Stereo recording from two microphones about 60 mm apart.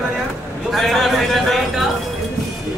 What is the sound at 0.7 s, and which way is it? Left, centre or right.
Speech, centre.